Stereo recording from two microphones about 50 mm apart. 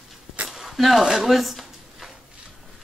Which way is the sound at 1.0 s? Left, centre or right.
Centre.